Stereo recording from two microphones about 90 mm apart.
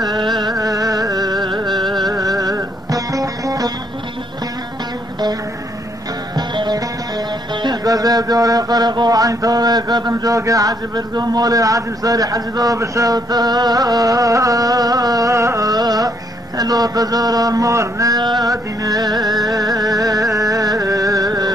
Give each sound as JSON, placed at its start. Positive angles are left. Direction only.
{"t": 0.1, "sound": "music", "side_deg": -50}
{"t": 1.9, "sound": "music", "side_deg": 0}
{"t": 2.1, "sound": "music", "side_deg": -45}
{"t": 6.3, "sound": "music", "side_deg": -55}
{"t": 7.6, "sound": "mantra", "side_deg": -45}
{"t": 18.2, "sound": "music", "side_deg": -50}
{"t": 19.2, "sound": "music", "side_deg": 0}
{"t": 19.5, "sound": "music", "side_deg": -45}